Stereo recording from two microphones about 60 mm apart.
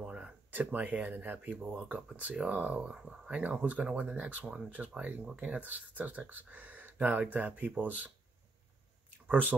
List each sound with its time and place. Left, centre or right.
0.0 s a sound: centre
0.5 s speech: right
1.8 s speech: centre
9.3 s speech: right